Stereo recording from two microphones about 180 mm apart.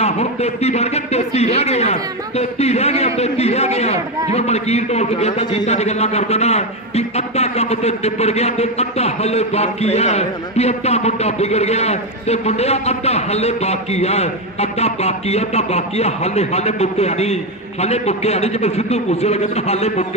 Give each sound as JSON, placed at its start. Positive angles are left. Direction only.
{"t": 0.0, "sound": "a man's voice", "side_deg": 35}